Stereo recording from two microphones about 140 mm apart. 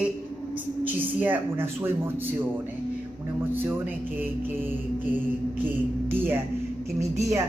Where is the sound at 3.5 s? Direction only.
15° right (ahead or behind).